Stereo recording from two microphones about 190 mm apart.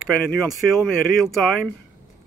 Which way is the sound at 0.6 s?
Centre (ahead or behind).